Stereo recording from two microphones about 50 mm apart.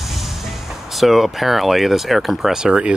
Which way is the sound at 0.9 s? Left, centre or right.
Centre.